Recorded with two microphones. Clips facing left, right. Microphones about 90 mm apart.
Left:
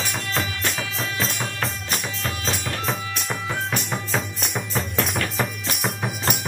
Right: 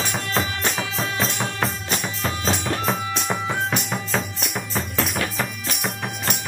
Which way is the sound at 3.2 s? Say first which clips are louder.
Right 2 dB; 15° right (ahead or behind).